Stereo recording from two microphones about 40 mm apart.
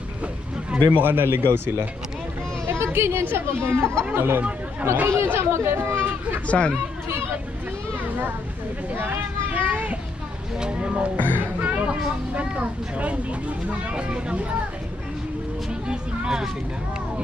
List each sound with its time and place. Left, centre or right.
0.9 s speech: right
2.6 s a sound: right
3.3 s speech: right
5.0 s speech: right
6.4 s speech: left
8.9 s speech: right
9.5 s a child's voice: right
10.6 s speech: right
11.1 s speech: left
11.6 s a sound: right
12.4 s speech: right
15.9 s a sound: centre